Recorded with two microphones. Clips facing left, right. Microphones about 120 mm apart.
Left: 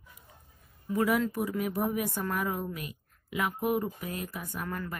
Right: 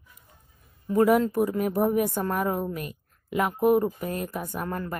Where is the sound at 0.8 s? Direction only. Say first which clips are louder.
Right 7 dB; 45° right (ahead or behind).